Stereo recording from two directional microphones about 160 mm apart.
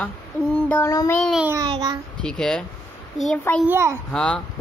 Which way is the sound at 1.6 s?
25° right (ahead or behind).